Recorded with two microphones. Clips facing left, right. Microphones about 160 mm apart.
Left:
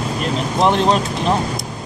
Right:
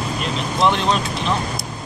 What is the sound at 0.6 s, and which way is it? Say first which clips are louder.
Speech: left 3 dB; 45° left (ahead or behind).